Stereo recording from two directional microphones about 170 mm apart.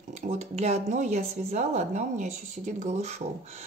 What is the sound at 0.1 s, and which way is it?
Speech, 40° right (ahead or behind).